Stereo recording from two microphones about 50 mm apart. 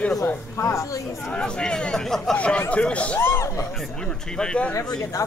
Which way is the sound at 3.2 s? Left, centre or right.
Left.